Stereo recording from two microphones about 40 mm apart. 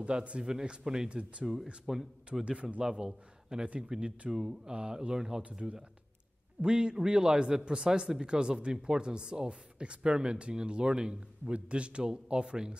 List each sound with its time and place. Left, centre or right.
0.0 s speech: right
0.5 s speech: centre
1.4 s speech: centre
2.4 s speech: right
2.8 s a man's voice: centre
3.6 s speech: right
4.3 s speech: centre
5.4 s speech: right